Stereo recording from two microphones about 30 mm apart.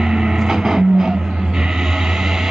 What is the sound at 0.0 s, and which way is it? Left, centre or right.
Music, right.